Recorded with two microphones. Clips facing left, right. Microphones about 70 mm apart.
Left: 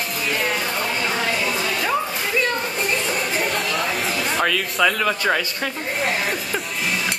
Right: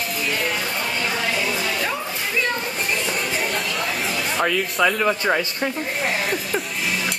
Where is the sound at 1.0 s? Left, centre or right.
Centre.